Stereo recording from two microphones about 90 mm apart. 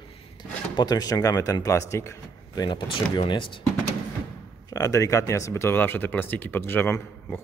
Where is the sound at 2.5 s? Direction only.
45° left (ahead or behind).